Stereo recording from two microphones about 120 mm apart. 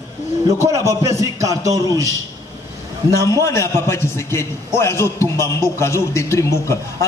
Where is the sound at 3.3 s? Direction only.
25° left (ahead or behind).